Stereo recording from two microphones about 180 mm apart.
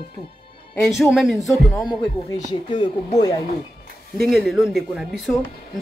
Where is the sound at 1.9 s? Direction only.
20° left (ahead or behind).